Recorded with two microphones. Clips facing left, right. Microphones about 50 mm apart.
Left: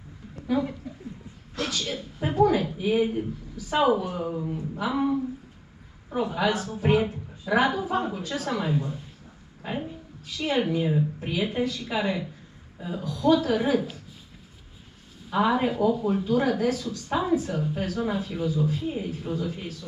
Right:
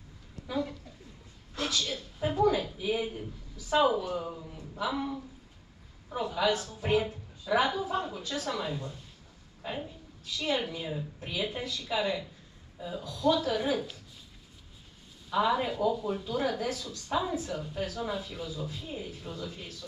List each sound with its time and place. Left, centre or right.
0.5 s a woman's voice: left
1.5 s a sound: left
1.8 s a woman's voice: left
15.2 s a woman's voice: left